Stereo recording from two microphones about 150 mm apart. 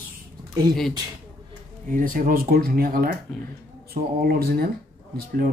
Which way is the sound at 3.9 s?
90° right.